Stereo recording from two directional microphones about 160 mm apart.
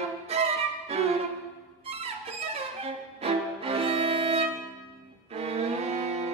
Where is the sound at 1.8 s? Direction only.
40° right (ahead or behind).